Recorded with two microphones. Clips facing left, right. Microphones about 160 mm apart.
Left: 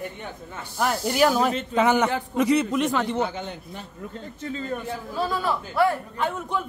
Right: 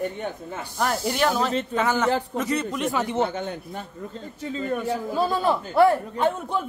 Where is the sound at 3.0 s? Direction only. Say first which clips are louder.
Right 1 dB; 20° right (ahead or behind).